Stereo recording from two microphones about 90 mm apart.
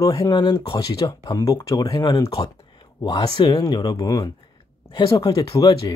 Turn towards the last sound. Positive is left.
turn(degrees=45)  # may be behind; listen again after turning